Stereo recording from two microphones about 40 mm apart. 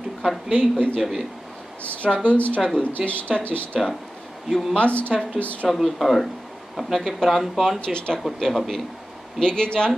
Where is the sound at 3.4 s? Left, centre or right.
Left.